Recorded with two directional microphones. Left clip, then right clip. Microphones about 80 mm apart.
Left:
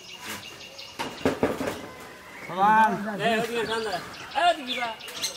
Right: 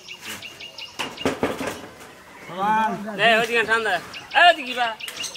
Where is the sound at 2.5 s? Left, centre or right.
Centre.